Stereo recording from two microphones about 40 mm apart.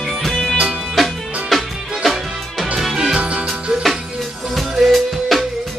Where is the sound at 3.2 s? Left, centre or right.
Right.